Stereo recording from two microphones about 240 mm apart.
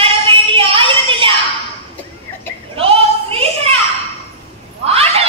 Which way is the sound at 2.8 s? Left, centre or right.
Right.